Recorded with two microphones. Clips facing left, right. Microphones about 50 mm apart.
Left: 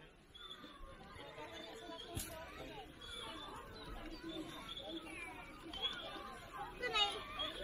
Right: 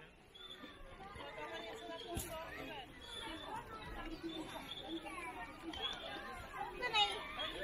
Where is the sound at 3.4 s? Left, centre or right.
Right.